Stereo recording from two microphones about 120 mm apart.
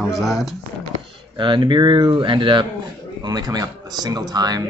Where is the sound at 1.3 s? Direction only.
40° right (ahead or behind).